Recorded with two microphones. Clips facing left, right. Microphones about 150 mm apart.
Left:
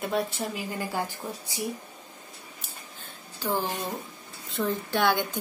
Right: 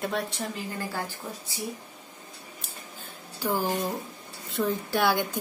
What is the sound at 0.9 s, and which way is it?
Speech, 15° left (ahead or behind).